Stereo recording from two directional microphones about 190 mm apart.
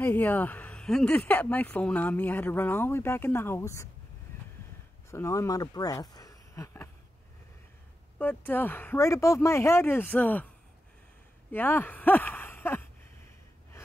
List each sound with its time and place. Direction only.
0.0 s speech: 10° left (ahead or behind)
5.1 s speech: 15° left (ahead or behind)
8.2 s speech: 10° left (ahead or behind)
11.5 s a sound: 10° left (ahead or behind)